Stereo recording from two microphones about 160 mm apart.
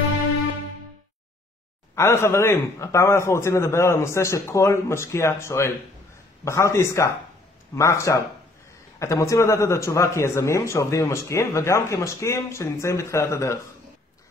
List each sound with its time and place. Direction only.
2.0 s a man's voice: 15° left (ahead or behind)